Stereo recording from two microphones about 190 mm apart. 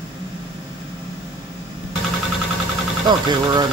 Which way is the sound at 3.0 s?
20° right (ahead or behind).